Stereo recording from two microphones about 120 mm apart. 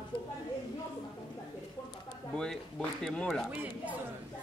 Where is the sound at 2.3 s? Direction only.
5° left (ahead or behind).